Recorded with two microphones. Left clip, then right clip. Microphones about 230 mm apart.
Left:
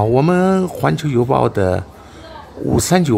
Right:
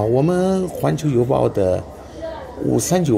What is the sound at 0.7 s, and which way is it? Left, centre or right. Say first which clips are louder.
Speech: left 2 dB; left.